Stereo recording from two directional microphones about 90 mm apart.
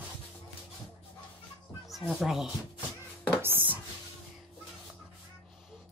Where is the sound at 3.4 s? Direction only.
20° right (ahead or behind).